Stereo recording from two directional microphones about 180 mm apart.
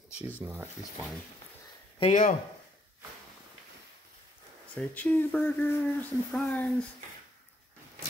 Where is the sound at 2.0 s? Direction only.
40° left (ahead or behind).